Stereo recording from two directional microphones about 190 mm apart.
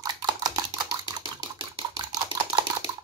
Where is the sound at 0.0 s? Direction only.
20° right (ahead or behind).